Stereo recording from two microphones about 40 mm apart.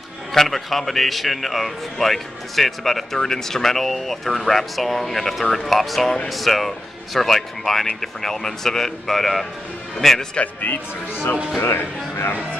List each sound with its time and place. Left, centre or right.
0.3 s a man's voice: centre
10.4 s speech: left
11.6 s speech: left